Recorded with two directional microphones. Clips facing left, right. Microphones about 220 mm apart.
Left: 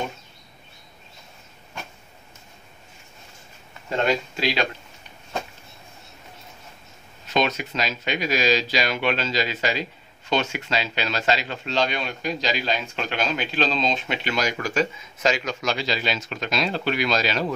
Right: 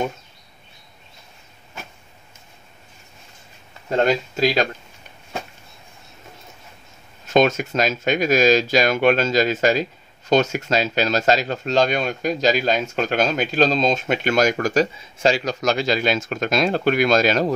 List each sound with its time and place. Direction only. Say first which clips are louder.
3.9 s speech: right 4 dB; 45° right (ahead or behind)
7.2 s speech: right 7 dB; 45° right (ahead or behind)